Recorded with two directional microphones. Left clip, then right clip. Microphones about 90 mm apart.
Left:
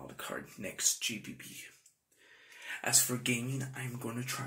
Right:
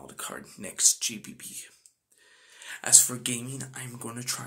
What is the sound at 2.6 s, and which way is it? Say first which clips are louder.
Speech: right 8 dB; 25° right (ahead or behind).